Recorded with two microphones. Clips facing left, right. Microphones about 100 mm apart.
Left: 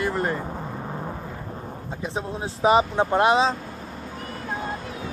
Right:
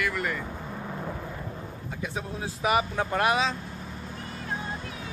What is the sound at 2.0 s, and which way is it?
Speech, 30° left (ahead or behind).